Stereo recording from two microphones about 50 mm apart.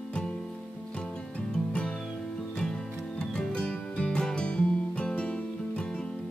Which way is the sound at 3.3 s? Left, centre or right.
Centre.